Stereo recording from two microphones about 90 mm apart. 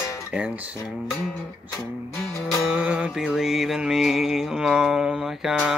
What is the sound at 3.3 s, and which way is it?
Mantra, 5° right (ahead or behind).